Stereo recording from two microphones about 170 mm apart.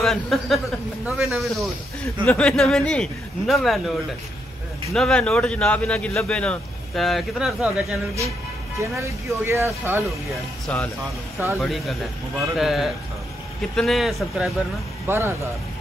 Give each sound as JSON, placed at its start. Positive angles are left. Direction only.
{"t": 0.0, "sound": "speech", "side_deg": 0}
{"t": 4.9, "sound": "speech", "side_deg": 5}
{"t": 8.7, "sound": "speech", "side_deg": -15}
{"t": 10.7, "sound": "speech", "side_deg": 5}
{"t": 15.0, "sound": "speech", "side_deg": -15}